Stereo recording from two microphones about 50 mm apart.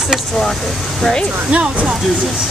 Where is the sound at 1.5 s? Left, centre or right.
Right.